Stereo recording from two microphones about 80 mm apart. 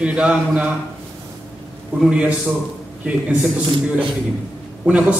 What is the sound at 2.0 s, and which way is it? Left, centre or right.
Speech, centre.